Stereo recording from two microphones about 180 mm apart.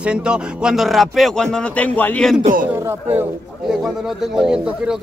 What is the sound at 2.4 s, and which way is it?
Speech, 50° right (ahead or behind).